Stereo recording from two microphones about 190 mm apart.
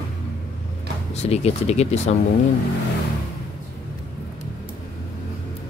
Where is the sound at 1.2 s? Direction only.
35° left (ahead or behind).